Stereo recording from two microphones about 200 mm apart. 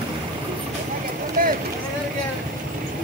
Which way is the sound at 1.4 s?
40° right (ahead or behind).